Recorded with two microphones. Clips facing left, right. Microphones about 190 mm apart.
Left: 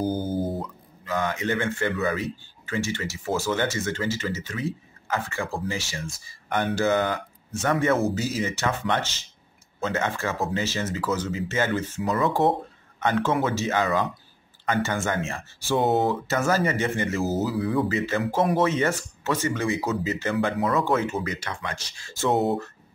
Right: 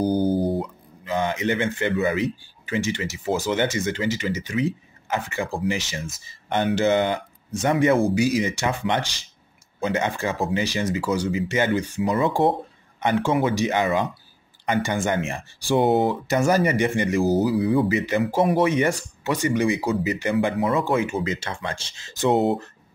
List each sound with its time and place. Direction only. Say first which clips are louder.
0.3 s music: right 5 dB; centre (ahead or behind)
0.6 s speech: right 5 dB; 20° right (ahead or behind)
21.2 s speech: right 4 dB; 25° right (ahead or behind)